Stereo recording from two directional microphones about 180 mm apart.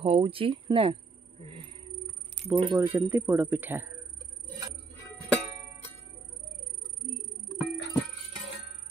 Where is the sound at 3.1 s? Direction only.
15° right (ahead or behind).